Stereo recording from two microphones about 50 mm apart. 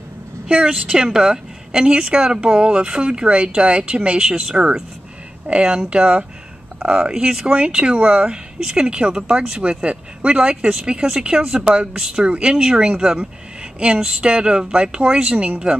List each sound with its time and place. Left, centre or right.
0.5 s a woman's voice: right
7.5 s a woman's voice: right
8.2 s a woman's voice: centre